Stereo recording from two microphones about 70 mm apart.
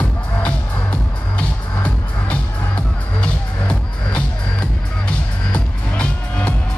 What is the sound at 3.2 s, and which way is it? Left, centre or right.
Music, centre.